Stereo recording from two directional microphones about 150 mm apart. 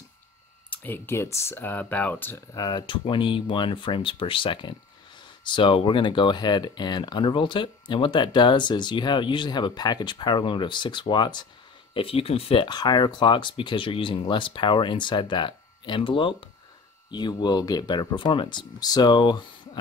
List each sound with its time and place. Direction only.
0.7 s speech: 15° left (ahead or behind); by 19.8 s 30° left (ahead or behind)